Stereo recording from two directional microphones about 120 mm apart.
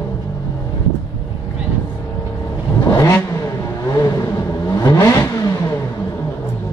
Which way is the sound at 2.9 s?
20° left (ahead or behind).